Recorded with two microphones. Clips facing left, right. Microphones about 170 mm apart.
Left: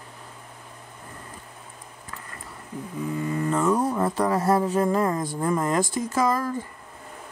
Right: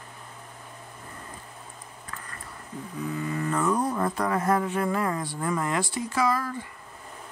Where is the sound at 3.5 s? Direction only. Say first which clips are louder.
Left 3 dB; 10° left (ahead or behind).